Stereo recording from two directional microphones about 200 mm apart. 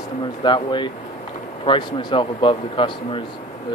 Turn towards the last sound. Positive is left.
turn(degrees=25)  # may be behind; listen again after turning